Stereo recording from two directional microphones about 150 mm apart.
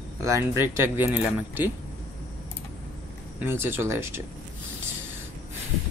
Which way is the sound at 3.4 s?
15° right (ahead or behind).